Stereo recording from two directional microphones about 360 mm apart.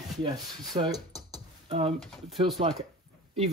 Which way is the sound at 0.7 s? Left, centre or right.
Centre.